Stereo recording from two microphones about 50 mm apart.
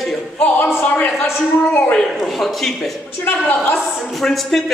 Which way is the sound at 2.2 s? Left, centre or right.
Centre.